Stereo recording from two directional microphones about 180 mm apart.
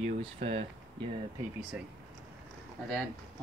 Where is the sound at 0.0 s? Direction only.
35° right (ahead or behind).